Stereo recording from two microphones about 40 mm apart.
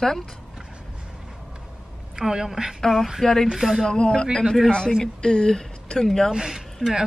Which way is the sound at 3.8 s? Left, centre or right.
Left.